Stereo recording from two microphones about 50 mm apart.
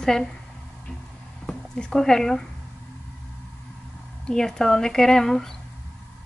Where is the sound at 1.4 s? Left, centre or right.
Centre.